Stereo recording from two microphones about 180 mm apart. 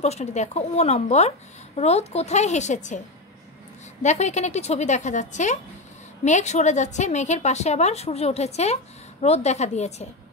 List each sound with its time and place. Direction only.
0.0 s a woman's voice: 40° left (ahead or behind)
4.0 s a woman's voice: 40° left (ahead or behind)